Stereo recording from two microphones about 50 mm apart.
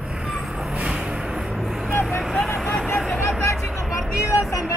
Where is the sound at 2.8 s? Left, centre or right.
Centre.